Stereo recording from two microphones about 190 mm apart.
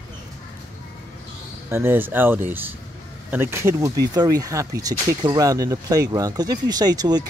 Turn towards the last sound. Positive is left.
turn(degrees=-20)  # may be behind; listen again after turning